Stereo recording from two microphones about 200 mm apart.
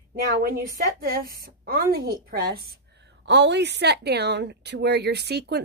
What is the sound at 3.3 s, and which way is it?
Speech, 60° right (ahead or behind).